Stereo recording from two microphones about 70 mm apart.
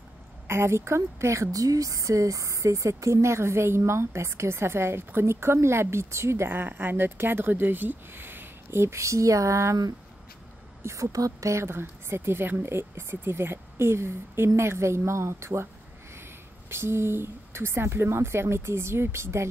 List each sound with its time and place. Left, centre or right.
0.5 s speech: right
10.8 s speech: right